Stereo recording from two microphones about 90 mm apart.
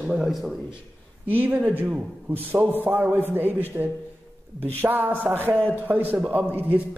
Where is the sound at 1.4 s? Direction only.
20° right (ahead or behind).